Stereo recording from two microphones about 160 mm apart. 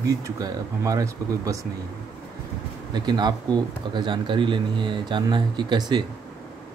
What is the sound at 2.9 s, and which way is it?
Speech, 25° right (ahead or behind).